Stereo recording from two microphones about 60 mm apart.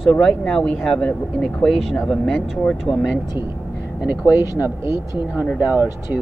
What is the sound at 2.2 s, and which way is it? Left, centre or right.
Speech, centre.